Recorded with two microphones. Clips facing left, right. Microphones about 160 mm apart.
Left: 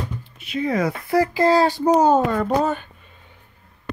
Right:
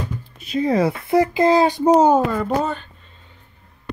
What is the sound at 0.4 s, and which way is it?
Speech, 35° right (ahead or behind).